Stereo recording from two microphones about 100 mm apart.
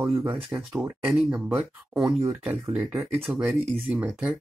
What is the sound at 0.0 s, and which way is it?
Speech, 30° right (ahead or behind).